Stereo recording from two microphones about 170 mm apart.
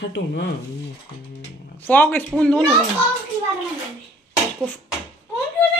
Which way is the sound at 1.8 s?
10° left (ahead or behind).